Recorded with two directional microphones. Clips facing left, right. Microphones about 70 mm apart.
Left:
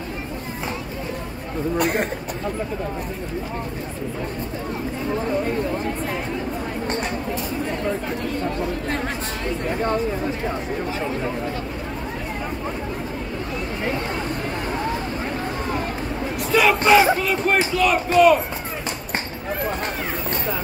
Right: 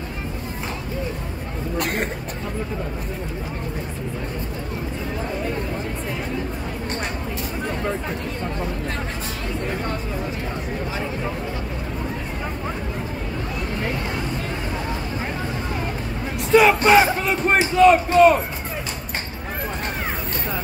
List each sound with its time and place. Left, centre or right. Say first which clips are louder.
16.5 s speech: right 2 dB; right